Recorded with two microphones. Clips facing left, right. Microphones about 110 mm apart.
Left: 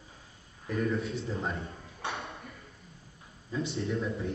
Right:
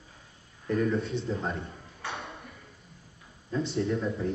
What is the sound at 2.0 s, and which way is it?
Ping, 30° left (ahead or behind).